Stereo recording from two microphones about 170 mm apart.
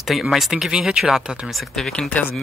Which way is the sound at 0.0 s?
Centre (ahead or behind).